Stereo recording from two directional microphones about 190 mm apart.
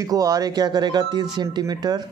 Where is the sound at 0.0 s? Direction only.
15° right (ahead or behind).